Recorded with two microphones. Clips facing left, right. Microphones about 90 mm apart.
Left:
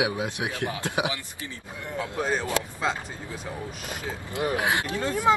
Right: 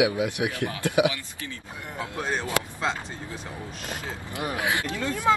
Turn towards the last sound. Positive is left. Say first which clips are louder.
# left 1 dB
turn(degrees=20)  # may be behind; listen again after turning